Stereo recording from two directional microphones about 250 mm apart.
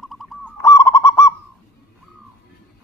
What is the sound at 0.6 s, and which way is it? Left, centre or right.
Goose, centre.